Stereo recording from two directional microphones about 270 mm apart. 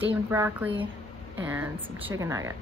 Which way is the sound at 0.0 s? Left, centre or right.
Centre.